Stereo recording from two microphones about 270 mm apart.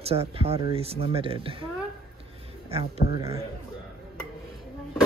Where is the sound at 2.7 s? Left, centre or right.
Right.